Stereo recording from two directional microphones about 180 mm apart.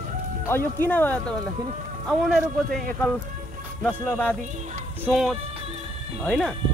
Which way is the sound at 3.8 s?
10° left (ahead or behind).